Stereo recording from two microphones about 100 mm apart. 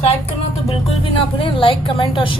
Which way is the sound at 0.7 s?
65° left (ahead or behind).